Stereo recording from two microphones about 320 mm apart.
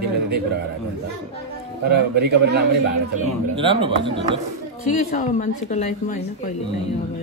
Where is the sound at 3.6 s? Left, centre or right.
Centre.